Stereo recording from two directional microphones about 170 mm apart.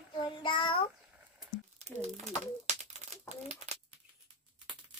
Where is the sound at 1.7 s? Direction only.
40° right (ahead or behind).